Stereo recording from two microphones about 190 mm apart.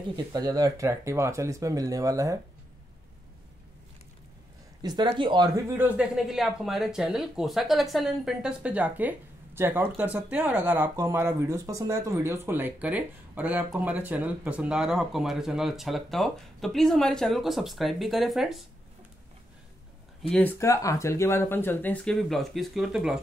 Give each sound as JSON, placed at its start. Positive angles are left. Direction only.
{"t": 0.1, "sound": "speech", "side_deg": -20}
{"t": 4.8, "sound": "speech", "side_deg": -25}
{"t": 5.8, "sound": "speech", "side_deg": -5}
{"t": 20.2, "sound": "speech", "side_deg": 10}